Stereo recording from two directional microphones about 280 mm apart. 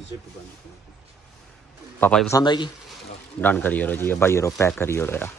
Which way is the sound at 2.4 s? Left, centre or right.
Centre.